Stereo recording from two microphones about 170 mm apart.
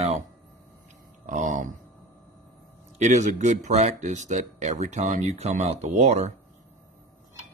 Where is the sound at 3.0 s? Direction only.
45° right (ahead or behind).